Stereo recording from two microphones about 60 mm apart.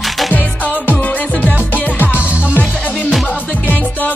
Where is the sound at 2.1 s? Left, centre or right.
Right.